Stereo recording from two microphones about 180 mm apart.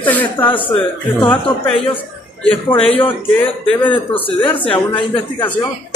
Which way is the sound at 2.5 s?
30° left (ahead or behind).